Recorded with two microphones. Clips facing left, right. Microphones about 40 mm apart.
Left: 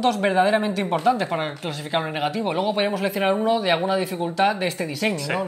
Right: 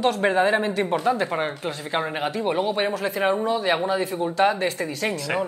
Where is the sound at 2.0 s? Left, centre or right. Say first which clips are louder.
Left 1 dB; centre.